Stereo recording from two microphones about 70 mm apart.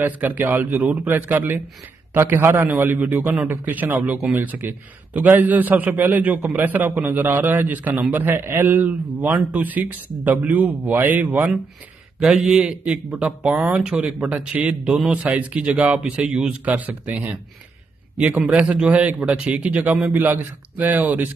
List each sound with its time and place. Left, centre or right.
0.0 s a man's voice: right
12.2 s a man's voice: centre; by 21.3 s right